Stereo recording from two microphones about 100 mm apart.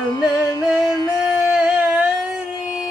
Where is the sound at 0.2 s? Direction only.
40° left (ahead or behind).